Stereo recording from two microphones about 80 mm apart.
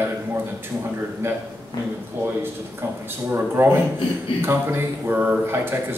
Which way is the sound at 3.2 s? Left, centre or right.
Right.